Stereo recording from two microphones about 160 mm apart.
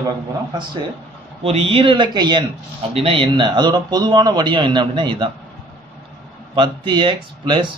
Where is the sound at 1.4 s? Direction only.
40° right (ahead or behind).